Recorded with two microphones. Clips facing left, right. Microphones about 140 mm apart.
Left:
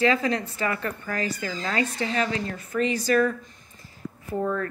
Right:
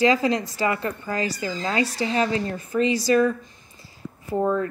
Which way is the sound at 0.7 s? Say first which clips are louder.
Right 3 dB; 25° right (ahead or behind).